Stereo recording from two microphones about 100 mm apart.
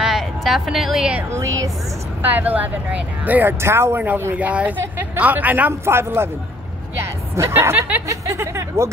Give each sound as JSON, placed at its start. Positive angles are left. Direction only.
{"t": 0.0, "sound": "speech", "side_deg": 0}
{"t": 2.2, "sound": "speech", "side_deg": -20}